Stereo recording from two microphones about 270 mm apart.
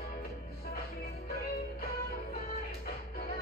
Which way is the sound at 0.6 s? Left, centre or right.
Left.